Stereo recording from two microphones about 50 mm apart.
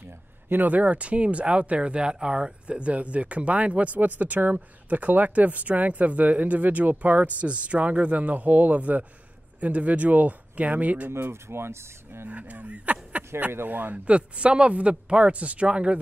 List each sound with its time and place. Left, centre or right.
0.5 s speech: right
11.1 s speech: right
11.4 s speech: right
12.3 s speech: right
14.0 s speech: right